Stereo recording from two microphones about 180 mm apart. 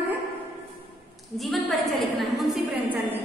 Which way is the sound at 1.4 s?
Centre (ahead or behind).